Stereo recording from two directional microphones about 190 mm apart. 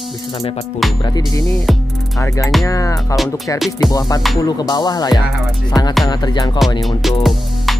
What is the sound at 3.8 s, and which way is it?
Speech, 20° left (ahead or behind).